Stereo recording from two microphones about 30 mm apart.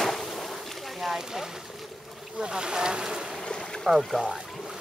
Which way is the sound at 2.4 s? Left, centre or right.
Right.